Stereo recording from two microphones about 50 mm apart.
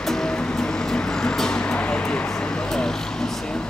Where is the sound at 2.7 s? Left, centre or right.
Centre.